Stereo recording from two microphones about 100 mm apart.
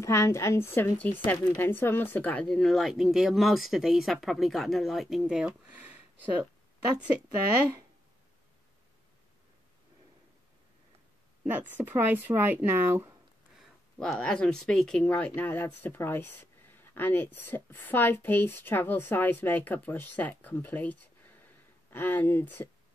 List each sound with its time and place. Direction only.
0.0 s a woman's voice: 30° left (ahead or behind)
2.4 s speech: 5° left (ahead or behind); by 6.5 s 15° right (ahead or behind)
11.4 s speech: 20° right (ahead or behind)
13.9 s a woman's voice: 5° left (ahead or behind)